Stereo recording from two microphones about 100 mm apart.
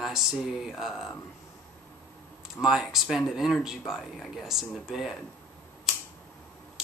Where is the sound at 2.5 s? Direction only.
5° right (ahead or behind).